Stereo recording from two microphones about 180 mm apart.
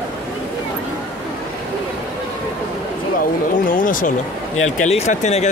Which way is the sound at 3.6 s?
50° left (ahead or behind).